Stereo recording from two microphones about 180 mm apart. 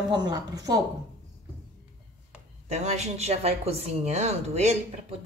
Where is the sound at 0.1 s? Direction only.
25° right (ahead or behind).